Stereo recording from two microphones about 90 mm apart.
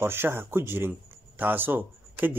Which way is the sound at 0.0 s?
25° right (ahead or behind).